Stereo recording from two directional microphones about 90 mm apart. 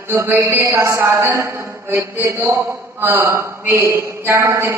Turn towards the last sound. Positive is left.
turn(degrees=-30)  # may be behind; listen again after turning